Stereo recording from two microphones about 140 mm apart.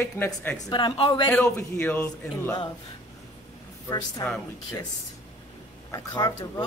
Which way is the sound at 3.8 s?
25° left (ahead or behind).